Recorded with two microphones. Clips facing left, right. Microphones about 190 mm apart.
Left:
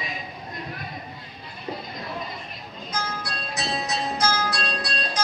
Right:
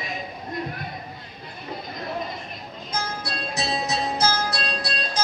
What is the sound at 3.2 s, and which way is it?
Music, 25° right (ahead or behind).